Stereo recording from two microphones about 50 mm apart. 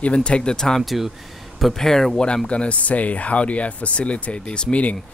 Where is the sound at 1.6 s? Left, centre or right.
Centre.